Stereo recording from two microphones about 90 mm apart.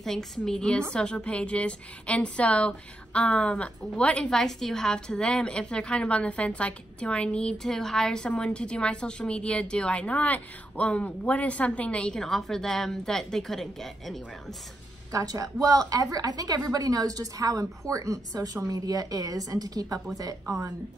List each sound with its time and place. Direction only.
0.0 s a woman's voice: 5° left (ahead or behind)
15.1 s speech: 40° right (ahead or behind)